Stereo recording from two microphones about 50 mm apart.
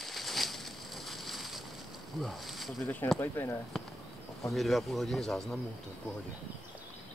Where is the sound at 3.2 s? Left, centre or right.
Left.